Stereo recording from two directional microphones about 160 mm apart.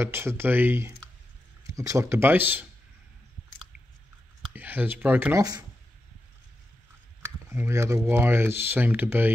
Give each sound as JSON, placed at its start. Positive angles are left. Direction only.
{"t": 0.0, "sound": "speech", "side_deg": -15}
{"t": 4.6, "sound": "speech", "side_deg": -10}
{"t": 7.2, "sound": "speech", "side_deg": -15}